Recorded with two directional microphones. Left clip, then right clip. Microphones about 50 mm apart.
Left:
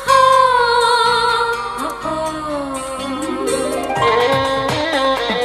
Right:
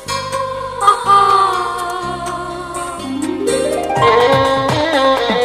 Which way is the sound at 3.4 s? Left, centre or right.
Left.